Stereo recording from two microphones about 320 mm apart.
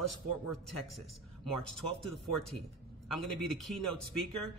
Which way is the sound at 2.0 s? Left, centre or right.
Centre.